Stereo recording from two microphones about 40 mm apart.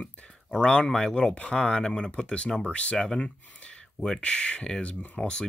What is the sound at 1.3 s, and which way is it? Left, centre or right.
Speech, left.